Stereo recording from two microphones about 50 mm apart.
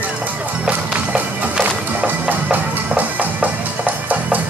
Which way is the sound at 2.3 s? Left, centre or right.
Right.